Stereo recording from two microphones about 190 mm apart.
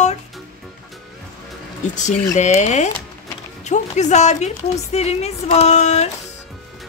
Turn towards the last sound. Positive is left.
turn(degrees=35)  # may be behind; listen again after turning